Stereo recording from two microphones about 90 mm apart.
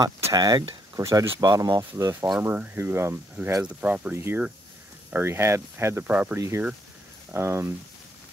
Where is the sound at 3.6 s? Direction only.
15° right (ahead or behind).